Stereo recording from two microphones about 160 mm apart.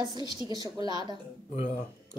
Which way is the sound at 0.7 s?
25° right (ahead or behind).